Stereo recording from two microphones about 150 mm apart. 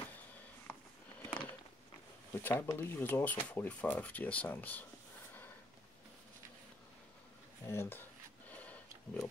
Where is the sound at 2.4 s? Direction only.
15° left (ahead or behind).